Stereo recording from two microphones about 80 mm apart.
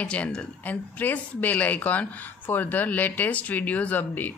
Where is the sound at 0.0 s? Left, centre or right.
Centre.